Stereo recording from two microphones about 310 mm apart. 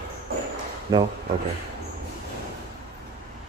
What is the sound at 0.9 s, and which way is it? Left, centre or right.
Speech, centre.